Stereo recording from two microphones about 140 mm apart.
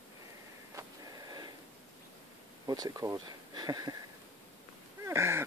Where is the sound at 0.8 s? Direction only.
30° right (ahead or behind).